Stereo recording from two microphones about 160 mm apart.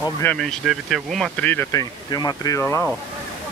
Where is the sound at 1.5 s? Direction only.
15° left (ahead or behind).